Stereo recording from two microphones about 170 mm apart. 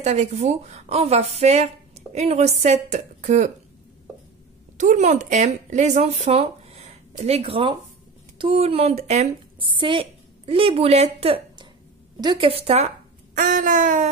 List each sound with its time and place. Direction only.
0.0 s a woman's voice: 40° right (ahead or behind)
4.7 s a woman's voice: 45° right (ahead or behind)
9.7 s a woman's voice: 30° right (ahead or behind); by 14.1 s 50° right (ahead or behind)